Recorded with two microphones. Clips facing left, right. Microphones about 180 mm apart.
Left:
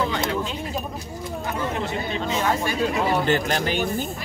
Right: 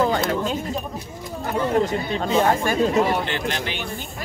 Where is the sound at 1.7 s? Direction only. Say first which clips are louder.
Right 6 dB; 45° right (ahead or behind).